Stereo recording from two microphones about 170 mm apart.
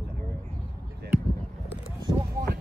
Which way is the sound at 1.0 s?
75° right (ahead or behind).